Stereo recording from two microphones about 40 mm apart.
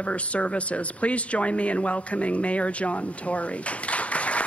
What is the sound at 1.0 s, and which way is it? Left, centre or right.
Speech, left.